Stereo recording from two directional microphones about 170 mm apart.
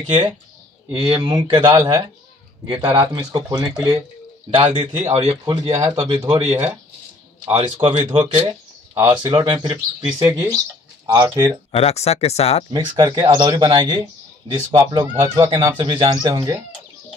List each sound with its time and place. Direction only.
0.9 s speech: 30° right (ahead or behind)
4.6 s a man's voice: 30° right (ahead or behind)
5.2 s speech: 15° right (ahead or behind)
7.5 s a man's voice: 30° right (ahead or behind); by 11.6 s 15° right (ahead or behind)
11.7 s speech: 35° left (ahead or behind)
12.7 s speech: 20° right (ahead or behind)